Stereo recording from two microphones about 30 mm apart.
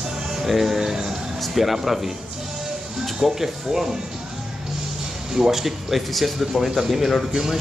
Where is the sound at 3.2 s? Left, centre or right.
Centre.